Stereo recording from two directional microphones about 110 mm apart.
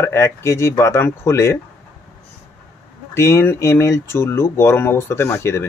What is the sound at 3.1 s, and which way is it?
Speech, 25° left (ahead or behind).